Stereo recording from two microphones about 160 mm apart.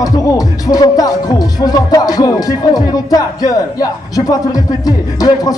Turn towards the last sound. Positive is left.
turn(degrees=25)  # may be behind; listen again after turning